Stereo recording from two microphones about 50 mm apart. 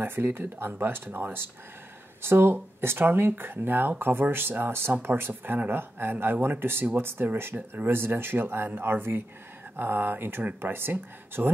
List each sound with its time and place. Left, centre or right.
0.0 s speech: right
6.3 s speech: right
6.6 s speech: right